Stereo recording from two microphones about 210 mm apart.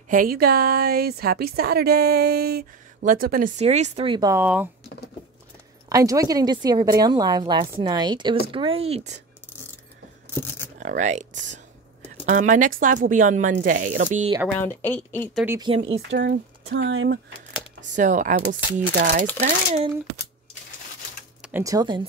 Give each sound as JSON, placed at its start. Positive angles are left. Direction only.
{"t": 0.1, "sound": "a woman's voice", "side_deg": -45}
{"t": 5.9, "sound": "a woman's voice", "side_deg": -15}
{"t": 10.8, "sound": "speech", "side_deg": -35}
{"t": 12.3, "sound": "speech", "side_deg": -35}
{"t": 14.6, "sound": "speech", "side_deg": 10}
{"t": 15.4, "sound": "speech", "side_deg": -15}
{"t": 15.7, "sound": "a woman's voice", "side_deg": -25}
{"t": 16.1, "sound": "speech", "side_deg": -55}
{"t": 17.5, "sound": "speech", "side_deg": -35}
{"t": 21.4, "sound": "speech", "side_deg": -10}